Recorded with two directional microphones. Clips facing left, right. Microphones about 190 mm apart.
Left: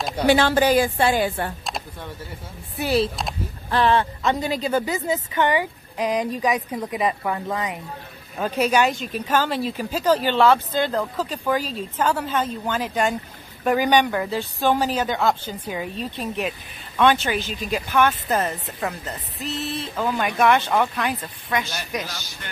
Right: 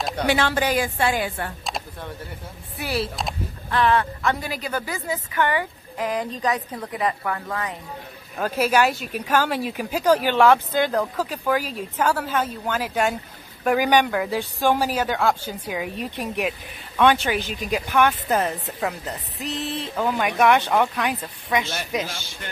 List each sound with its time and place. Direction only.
0.3 s a woman's voice: 35° left (ahead or behind)
1.7 s a sound: centre (ahead or behind)
2.8 s a woman's voice: 25° left (ahead or behind)
8.4 s a woman's voice: 5° right (ahead or behind)
18.3 s speech: 5° right (ahead or behind)
19.0 s a woman's voice: 15° right (ahead or behind)
21.6 s speech: 25° right (ahead or behind)